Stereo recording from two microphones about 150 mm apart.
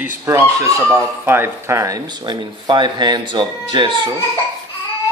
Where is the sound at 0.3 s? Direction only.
20° right (ahead or behind).